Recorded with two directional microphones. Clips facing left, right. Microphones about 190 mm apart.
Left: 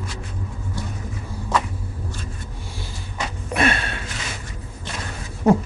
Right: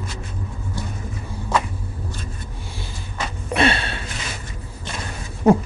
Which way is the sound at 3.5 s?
30° right (ahead or behind).